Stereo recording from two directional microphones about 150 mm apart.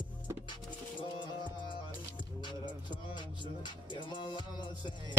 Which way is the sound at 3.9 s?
30° left (ahead or behind).